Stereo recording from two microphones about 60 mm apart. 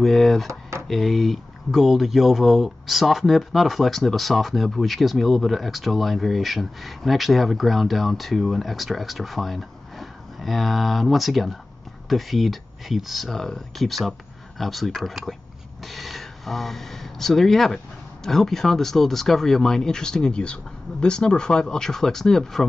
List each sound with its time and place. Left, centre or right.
0.0 s speech: centre
0.5 s a sound: right
0.8 s speech: centre